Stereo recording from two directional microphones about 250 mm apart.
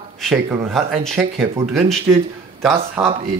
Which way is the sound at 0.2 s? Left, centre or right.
Centre.